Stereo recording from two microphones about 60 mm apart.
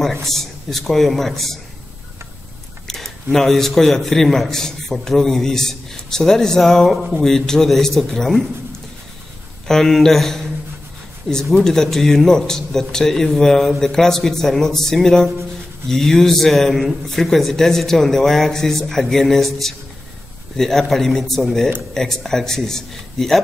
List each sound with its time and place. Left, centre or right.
0.0 s speech: centre
2.9 s a man's voice: centre
9.7 s speech: centre
11.5 s a man's voice: centre